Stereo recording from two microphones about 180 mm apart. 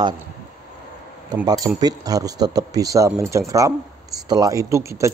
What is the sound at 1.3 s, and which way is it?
Speech, 20° right (ahead or behind).